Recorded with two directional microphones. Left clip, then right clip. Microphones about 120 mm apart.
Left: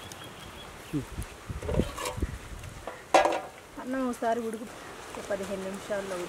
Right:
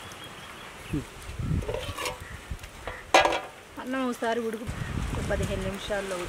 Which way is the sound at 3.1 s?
15° right (ahead or behind).